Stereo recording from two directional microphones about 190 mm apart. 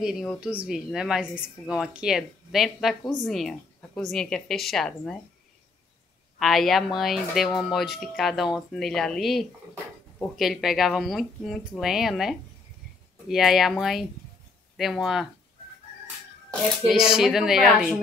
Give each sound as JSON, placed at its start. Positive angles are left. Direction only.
{"t": 0.0, "sound": "speech", "side_deg": 0}
{"t": 6.4, "sound": "speech", "side_deg": 0}
{"t": 16.9, "sound": "speech", "side_deg": -5}